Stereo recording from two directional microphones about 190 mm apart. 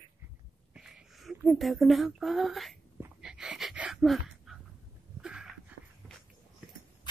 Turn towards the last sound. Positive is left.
turn(degrees=-5)  # may be behind; listen again after turning